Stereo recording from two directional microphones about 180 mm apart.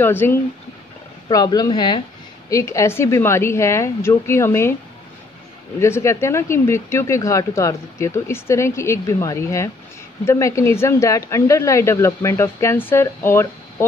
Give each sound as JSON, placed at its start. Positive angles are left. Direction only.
{"t": 0.0, "sound": "speech", "side_deg": 10}
{"t": 5.8, "sound": "speech", "side_deg": 15}